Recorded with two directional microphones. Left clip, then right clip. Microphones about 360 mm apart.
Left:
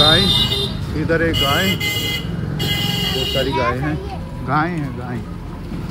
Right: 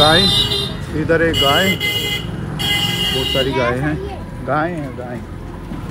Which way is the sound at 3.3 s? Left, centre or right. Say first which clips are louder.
Right 2 dB; right.